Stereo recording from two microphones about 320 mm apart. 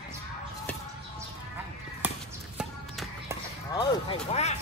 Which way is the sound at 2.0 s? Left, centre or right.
Centre.